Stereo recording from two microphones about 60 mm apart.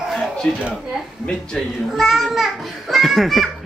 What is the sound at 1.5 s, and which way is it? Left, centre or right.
A child's voice, centre.